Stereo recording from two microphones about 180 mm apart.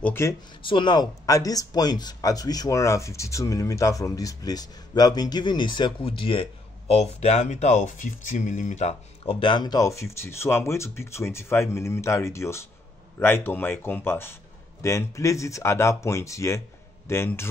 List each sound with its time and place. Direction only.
0.0 s speech: 15° left (ahead or behind)
0.6 s speech: 25° left (ahead or behind)